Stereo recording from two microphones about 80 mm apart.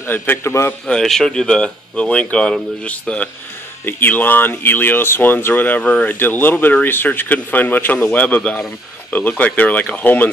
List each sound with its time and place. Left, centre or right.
0.0 s a man's voice: left
0.8 s speech: centre
8.4 s speech: centre
9.4 s speech: centre